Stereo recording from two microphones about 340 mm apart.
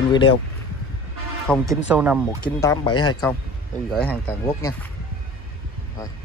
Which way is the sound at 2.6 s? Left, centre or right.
Centre.